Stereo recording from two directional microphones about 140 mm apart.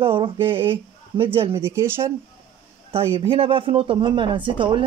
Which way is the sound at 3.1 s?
40° right (ahead or behind).